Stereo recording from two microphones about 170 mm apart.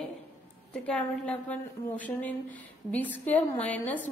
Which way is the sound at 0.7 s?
5° left (ahead or behind).